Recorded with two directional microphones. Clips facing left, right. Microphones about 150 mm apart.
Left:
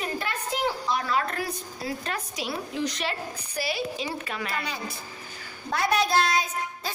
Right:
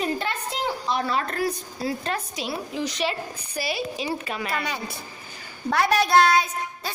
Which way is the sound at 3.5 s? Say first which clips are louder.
Right 1 dB; 15° right (ahead or behind).